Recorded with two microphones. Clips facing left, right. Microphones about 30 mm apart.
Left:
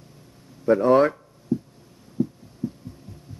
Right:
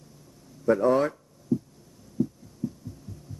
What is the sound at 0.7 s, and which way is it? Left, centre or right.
Speech, left.